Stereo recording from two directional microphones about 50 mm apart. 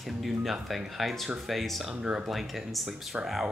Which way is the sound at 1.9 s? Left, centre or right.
Right.